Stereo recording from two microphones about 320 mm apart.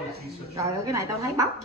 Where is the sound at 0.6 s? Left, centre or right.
Centre.